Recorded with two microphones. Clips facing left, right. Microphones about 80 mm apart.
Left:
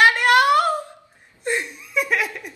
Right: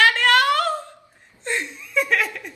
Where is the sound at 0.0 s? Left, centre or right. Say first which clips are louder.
Left 2 dB; centre.